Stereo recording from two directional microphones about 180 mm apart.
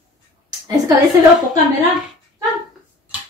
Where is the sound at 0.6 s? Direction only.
20° right (ahead or behind).